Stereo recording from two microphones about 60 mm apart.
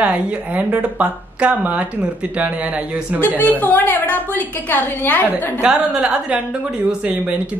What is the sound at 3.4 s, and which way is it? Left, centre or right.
A woman's voice, left.